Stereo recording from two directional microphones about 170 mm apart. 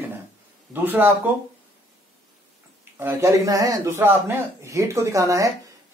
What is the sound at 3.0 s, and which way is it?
Speech, 15° right (ahead or behind).